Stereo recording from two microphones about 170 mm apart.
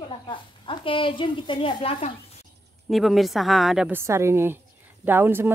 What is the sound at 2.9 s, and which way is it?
A woman's voice, centre (ahead or behind).